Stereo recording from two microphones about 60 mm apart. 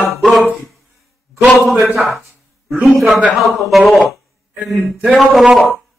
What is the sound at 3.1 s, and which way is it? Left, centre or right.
Speech, right.